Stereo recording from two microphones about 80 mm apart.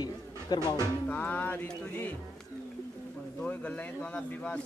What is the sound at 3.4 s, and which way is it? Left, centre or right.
Speech, centre.